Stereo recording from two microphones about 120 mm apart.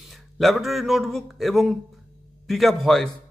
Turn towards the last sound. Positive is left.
turn(degrees=0)  # may be behind; listen again after turning